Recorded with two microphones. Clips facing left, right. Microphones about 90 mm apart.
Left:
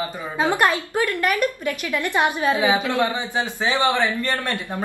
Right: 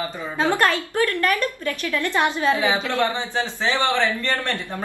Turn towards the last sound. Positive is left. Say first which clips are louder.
# even
turn(degrees=15)  # may be behind; listen again after turning